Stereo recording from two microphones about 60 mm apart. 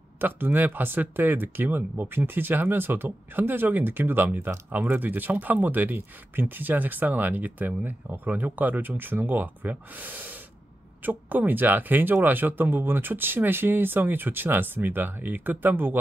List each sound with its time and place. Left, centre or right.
0.2 s speech: right